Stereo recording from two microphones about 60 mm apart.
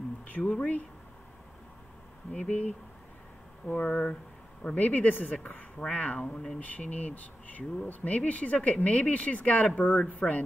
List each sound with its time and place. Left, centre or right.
0.3 s speech: left
3.6 s speech: left